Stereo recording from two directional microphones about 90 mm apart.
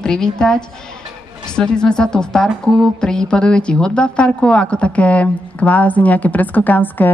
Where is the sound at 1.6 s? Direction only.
10° left (ahead or behind).